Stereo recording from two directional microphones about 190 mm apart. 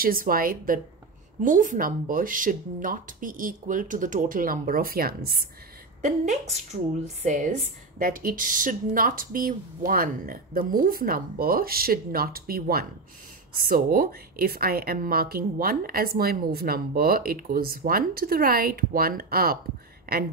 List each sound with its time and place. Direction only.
0.0 s a woman's voice: 50° right (ahead or behind)
6.0 s a woman's voice: 35° right (ahead or behind); by 20.2 s 55° right (ahead or behind)